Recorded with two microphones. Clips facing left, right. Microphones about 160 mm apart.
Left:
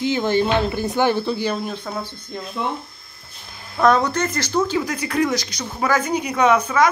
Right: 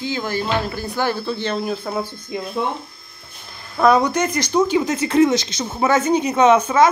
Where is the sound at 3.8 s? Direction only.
10° right (ahead or behind).